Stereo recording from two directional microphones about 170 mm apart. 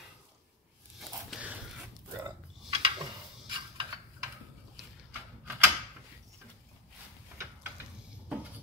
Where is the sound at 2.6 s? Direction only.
35° right (ahead or behind).